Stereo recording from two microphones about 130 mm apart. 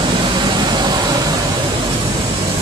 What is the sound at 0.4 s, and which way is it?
Vehicle, 35° right (ahead or behind).